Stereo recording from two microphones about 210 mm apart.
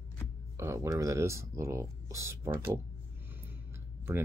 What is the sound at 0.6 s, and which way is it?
Speech, 15° right (ahead or behind).